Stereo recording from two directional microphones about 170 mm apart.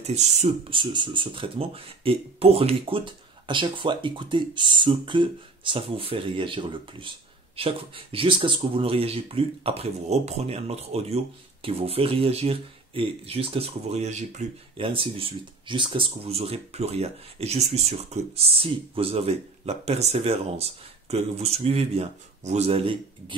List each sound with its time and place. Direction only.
0.0 s speech: 40° right (ahead or behind)
0.7 s speech: 25° right (ahead or behind)